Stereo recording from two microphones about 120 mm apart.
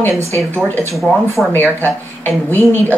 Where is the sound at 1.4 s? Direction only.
Centre (ahead or behind).